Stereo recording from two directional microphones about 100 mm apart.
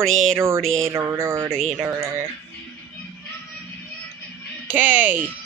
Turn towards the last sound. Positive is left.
turn(degrees=-20)  # may be behind; listen again after turning